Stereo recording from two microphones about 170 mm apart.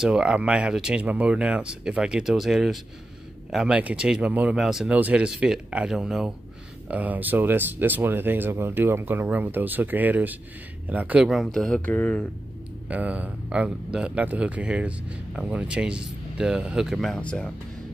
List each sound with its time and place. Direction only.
0.0 s speech: 5° right (ahead or behind)
12.8 s speech: 10° right (ahead or behind)